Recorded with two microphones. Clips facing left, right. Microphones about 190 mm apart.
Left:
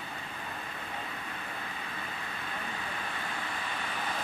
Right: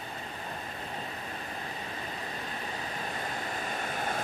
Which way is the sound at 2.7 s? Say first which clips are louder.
Right 2 dB; 40° right (ahead or behind).